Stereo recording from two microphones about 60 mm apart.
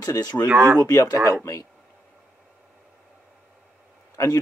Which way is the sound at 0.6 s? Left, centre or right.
Right.